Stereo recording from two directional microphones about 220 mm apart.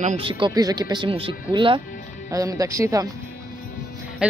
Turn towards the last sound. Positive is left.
turn(degrees=-5)  # may be behind; listen again after turning